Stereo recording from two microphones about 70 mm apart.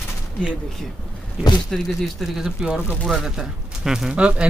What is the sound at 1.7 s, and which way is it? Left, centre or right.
Speech, centre.